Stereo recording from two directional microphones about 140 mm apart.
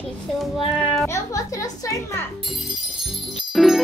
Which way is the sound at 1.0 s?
20° left (ahead or behind).